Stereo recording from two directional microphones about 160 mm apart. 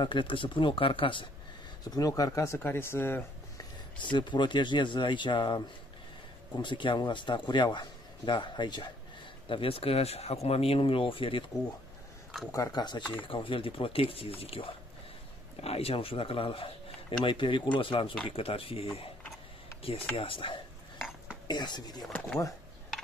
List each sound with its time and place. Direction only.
0.0 s speech: 30° left (ahead or behind)
1.9 s speech: 20° left (ahead or behind)
4.0 s a man's voice: 30° left (ahead or behind)
6.6 s a man's voice: 30° left (ahead or behind)
12.4 s a man's voice: 20° left (ahead or behind)
22.0 s speech: 10° left (ahead or behind)